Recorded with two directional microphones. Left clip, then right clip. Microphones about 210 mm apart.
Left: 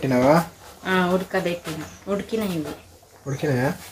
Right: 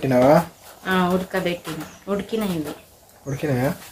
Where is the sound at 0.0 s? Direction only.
5° right (ahead or behind).